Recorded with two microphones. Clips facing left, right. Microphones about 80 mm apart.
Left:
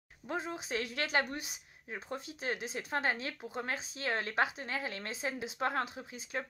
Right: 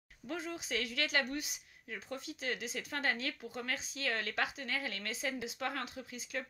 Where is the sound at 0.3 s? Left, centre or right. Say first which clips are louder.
Left 2 dB; left.